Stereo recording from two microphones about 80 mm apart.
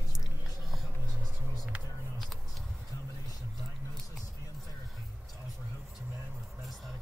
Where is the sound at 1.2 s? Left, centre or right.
Centre.